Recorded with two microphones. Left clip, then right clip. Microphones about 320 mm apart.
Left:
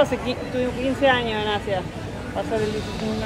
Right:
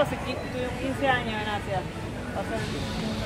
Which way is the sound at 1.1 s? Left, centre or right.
Left.